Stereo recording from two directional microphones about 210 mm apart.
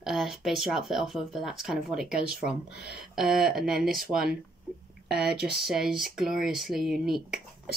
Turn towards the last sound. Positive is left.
turn(degrees=0)  # may be behind; listen again after turning